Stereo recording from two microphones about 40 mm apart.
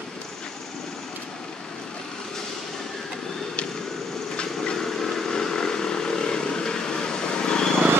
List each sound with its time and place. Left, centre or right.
4.7 s vehicle: centre